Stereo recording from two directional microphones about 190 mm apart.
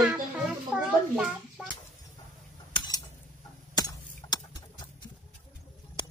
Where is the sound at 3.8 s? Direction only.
20° left (ahead or behind).